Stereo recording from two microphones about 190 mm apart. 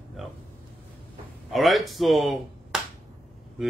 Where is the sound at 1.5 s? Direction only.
Centre (ahead or behind).